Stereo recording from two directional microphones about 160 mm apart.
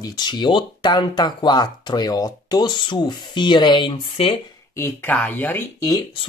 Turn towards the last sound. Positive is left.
turn(degrees=10)  # may be behind; listen again after turning